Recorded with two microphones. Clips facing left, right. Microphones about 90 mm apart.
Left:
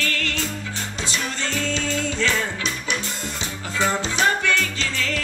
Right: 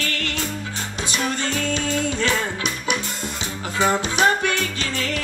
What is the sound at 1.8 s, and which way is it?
Music, 15° right (ahead or behind).